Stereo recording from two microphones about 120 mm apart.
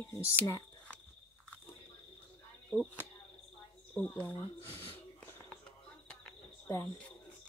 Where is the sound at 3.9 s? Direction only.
15° left (ahead or behind).